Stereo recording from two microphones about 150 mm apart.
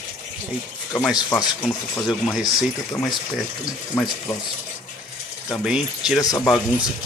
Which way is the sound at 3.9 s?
10° left (ahead or behind).